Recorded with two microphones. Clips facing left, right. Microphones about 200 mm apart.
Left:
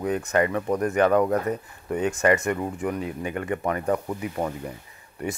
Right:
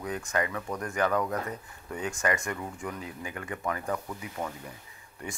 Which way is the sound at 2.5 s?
50° left (ahead or behind).